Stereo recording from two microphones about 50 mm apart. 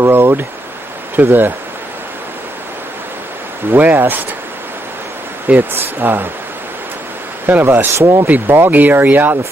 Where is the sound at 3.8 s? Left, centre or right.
Right.